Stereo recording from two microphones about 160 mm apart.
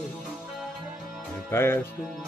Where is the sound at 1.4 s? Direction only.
15° left (ahead or behind).